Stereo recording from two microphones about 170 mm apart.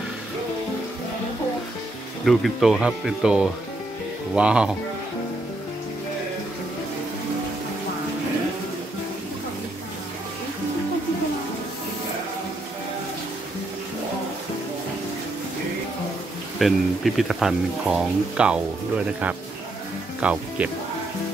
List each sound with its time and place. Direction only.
2.2 s speech: centre (ahead or behind)
16.5 s speech: centre (ahead or behind)